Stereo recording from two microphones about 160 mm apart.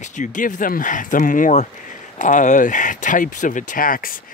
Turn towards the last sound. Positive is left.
turn(degrees=60)  # may be behind; listen again after turning